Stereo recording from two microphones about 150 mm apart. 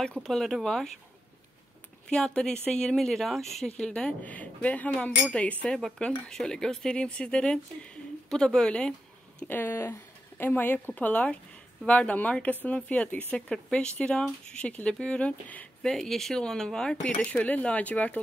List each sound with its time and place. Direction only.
0.0 s speech: 5° left (ahead or behind)
2.0 s speech: 5° left (ahead or behind)